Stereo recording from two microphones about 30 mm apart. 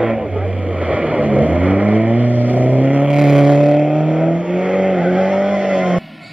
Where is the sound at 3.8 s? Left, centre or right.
Right.